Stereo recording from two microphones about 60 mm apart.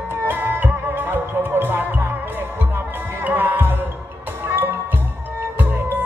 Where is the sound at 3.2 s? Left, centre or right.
Right.